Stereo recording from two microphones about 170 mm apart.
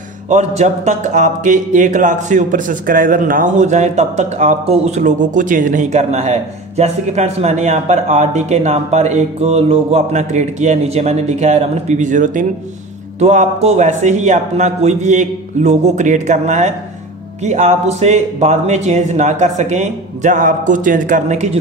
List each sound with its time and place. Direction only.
0.3 s speech: 40° right (ahead or behind)